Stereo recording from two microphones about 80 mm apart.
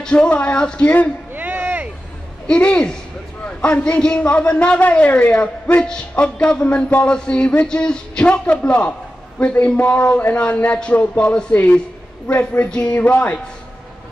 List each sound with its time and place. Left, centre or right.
0.0 s a man's voice: centre
1.3 s a sound: centre
2.4 s a man's voice: centre